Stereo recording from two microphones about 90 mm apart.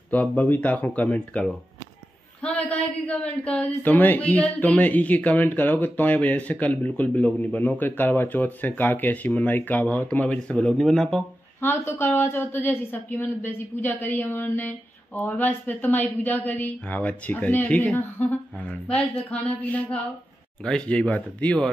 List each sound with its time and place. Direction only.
0.1 s speech: 15° left (ahead or behind)
10.7 s speech: centre (ahead or behind)
11.6 s a woman's voice: 25° left (ahead or behind)